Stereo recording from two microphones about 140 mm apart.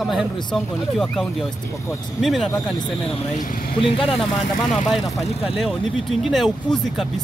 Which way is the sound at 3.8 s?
40° left (ahead or behind).